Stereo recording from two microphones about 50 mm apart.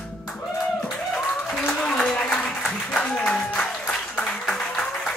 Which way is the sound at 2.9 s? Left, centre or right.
Centre.